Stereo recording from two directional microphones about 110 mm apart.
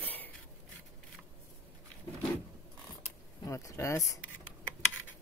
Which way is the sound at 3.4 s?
25° left (ahead or behind).